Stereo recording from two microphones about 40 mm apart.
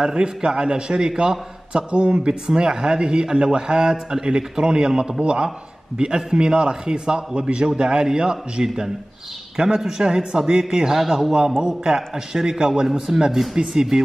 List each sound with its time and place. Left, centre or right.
0.0 s a man's voice: right
8.6 s a man's voice: centre